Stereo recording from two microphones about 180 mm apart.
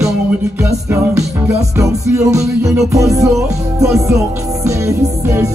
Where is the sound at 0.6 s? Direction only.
15° right (ahead or behind).